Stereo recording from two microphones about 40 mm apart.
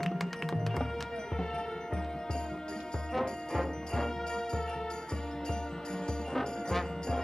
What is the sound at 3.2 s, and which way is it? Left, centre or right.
Music, centre.